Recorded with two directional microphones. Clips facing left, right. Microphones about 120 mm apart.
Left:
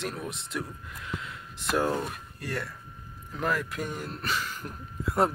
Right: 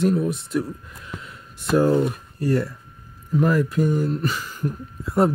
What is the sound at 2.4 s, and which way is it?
Speech, 35° right (ahead or behind).